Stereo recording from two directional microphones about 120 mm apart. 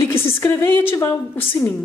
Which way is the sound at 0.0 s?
20° left (ahead or behind).